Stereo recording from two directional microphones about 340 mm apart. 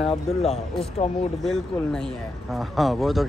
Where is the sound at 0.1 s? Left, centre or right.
Centre.